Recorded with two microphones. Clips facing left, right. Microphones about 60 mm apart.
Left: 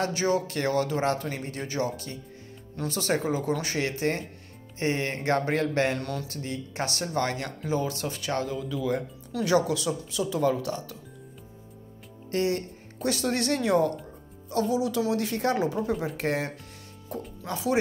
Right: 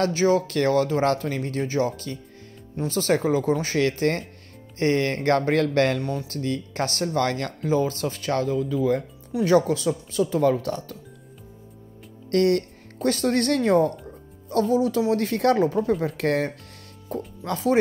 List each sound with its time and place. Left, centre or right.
0.0 s speech: right
12.3 s speech: right